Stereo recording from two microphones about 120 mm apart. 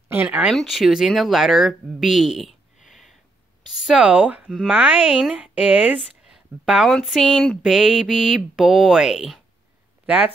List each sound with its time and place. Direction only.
0.1 s a sound: 15° right (ahead or behind)
0.5 s mantra: centre (ahead or behind)
3.7 s speech: 5° right (ahead or behind)
7.0 s mantra: centre (ahead or behind)
10.0 s speech: 10° right (ahead or behind)